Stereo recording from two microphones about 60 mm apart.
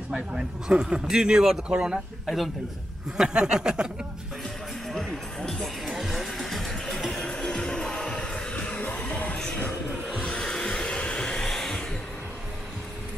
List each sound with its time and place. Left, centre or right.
0.1 s a man's voice: centre
2.2 s a man's voice: centre
3.2 s a man's voice: centre
4.8 s music: centre
5.9 s music: centre; by 9.4 s left
10.4 s hair dryer: centre